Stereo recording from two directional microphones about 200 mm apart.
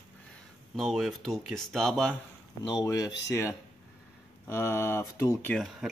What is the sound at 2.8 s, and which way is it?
Speech, 20° left (ahead or behind).